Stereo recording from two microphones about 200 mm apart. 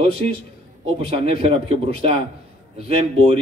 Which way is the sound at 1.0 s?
30° right (ahead or behind).